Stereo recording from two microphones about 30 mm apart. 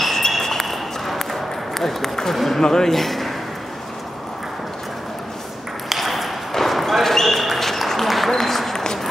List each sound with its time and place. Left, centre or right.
0.0 s a sound: centre
2.3 s speech: centre
2.6 s speech: centre
5.9 s ping: centre
6.5 s basketball bounce: centre
8.3 s applause: centre
8.7 s a sound: centre